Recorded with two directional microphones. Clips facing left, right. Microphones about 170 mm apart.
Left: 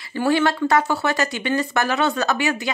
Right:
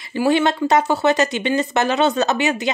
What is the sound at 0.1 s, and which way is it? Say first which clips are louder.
Speech: right 2 dB; 20° right (ahead or behind).